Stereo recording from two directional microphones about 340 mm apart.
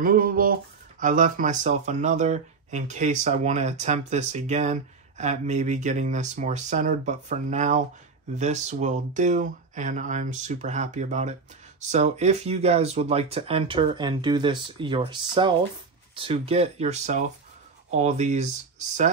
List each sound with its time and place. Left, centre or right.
0.0 s speech: right